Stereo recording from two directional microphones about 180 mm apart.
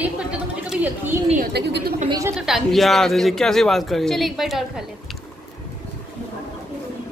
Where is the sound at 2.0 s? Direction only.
20° right (ahead or behind).